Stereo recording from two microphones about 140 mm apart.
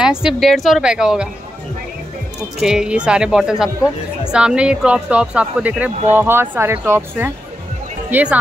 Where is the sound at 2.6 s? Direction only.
5° right (ahead or behind).